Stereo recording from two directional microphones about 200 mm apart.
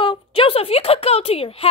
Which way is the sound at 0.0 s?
25° left (ahead or behind).